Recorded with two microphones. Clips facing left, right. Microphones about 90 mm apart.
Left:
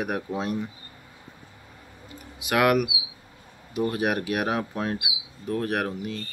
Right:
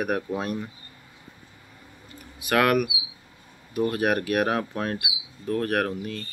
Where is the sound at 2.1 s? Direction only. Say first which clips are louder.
Right 2 dB; 15° left (ahead or behind).